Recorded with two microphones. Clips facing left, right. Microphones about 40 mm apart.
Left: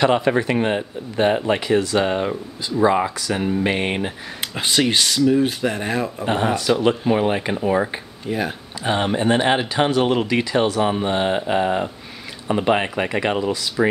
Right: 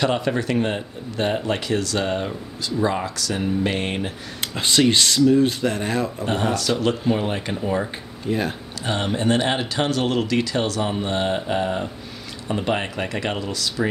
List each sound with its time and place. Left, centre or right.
0.0 s speech: left
4.4 s speech: centre
6.2 s speech: left
7.6 s speech: left
8.3 s speech: centre
8.8 s speech: left